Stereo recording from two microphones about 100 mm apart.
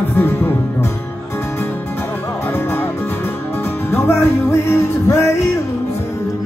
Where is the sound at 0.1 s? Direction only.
20° left (ahead or behind).